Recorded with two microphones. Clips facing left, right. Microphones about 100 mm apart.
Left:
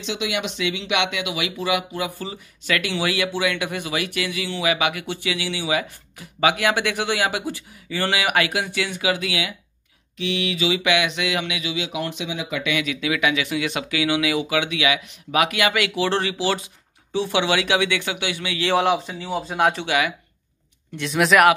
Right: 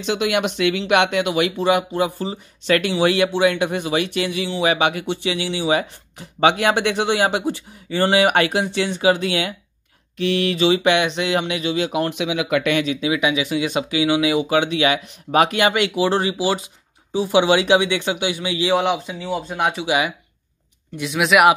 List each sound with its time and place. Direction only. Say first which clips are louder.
0.0 s speech: right 6 dB; 50° right (ahead or behind); by 12.6 s 70° right (ahead or behind)
12.8 s speech: right 3 dB; 30° right (ahead or behind)
14.5 s speech: right 4 dB; 35° right (ahead or behind)
15.9 s speech: right 3 dB; 15° right (ahead or behind)
18.7 s speech: left 1 dB; centre (ahead or behind)
19.9 s speech: right 2 dB; 20° right (ahead or behind)
20.9 s speech: even; 5° right (ahead or behind)